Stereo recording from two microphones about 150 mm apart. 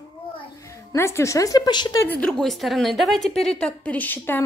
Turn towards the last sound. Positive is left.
turn(degrees=15)  # may be behind; listen again after turning